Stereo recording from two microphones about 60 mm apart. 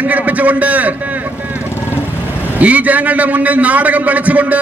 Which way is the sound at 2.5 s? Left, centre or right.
Right.